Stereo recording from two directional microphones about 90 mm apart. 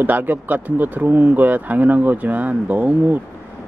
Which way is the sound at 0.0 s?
20° right (ahead or behind).